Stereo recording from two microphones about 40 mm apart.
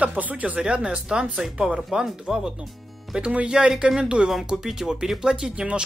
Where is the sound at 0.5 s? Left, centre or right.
Right.